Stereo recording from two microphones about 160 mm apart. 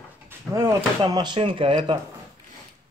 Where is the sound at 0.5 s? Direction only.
20° right (ahead or behind).